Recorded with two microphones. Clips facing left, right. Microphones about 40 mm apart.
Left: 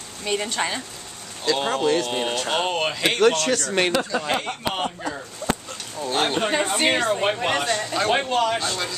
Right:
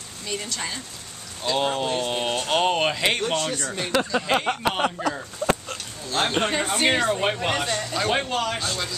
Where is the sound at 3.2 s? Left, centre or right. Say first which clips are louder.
Left 7 dB; left.